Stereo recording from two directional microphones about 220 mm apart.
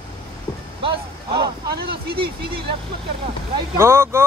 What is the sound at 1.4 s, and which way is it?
Speech, 45° right (ahead or behind).